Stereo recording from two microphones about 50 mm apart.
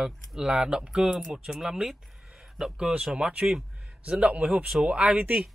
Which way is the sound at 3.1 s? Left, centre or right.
Right.